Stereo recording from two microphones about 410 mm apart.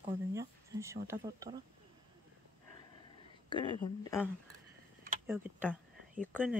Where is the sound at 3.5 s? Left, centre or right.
Centre.